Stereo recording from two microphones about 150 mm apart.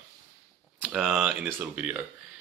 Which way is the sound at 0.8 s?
5° right (ahead or behind).